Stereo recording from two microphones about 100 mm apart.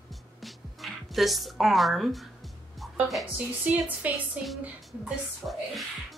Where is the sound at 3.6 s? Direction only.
15° right (ahead or behind).